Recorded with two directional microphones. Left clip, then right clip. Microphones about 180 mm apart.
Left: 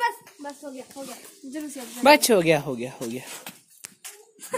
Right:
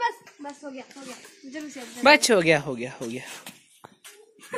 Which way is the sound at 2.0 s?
15° left (ahead or behind).